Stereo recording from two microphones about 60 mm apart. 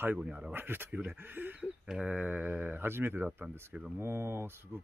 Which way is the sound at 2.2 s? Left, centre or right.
Right.